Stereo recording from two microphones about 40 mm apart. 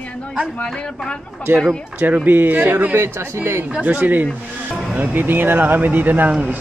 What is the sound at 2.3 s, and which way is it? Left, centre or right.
Speech, right.